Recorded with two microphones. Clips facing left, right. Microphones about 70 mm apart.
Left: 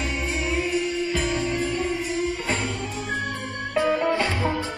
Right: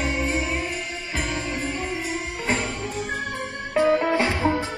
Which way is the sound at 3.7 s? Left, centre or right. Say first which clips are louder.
Right 2 dB; right.